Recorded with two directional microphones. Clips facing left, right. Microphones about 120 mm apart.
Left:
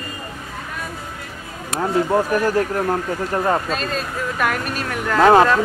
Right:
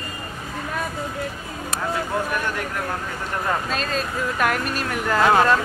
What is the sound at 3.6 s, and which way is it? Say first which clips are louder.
Speech: left 1 dB; centre (ahead or behind).